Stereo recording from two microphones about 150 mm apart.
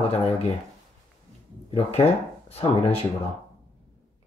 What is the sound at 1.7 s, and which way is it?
Speech, 45° left (ahead or behind).